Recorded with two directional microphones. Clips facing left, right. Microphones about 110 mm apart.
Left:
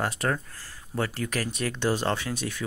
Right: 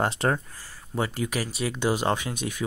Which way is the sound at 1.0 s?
15° right (ahead or behind).